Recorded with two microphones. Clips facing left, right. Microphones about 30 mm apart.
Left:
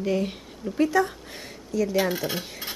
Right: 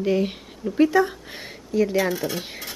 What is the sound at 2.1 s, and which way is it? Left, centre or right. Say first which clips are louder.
Speech: right 2 dB; centre.